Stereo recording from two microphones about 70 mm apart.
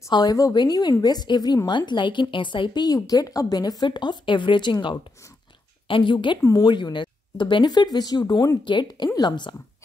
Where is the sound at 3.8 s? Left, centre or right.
Left.